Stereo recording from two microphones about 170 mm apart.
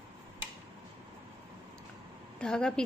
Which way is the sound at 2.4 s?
5° left (ahead or behind).